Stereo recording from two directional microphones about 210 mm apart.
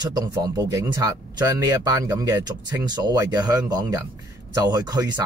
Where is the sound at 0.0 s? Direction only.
15° right (ahead or behind).